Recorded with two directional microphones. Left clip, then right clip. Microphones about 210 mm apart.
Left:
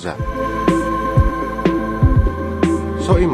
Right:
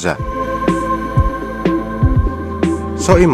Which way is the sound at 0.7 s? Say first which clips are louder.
Left 2 dB; centre (ahead or behind).